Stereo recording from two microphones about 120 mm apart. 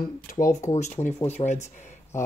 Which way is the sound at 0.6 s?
75° left (ahead or behind).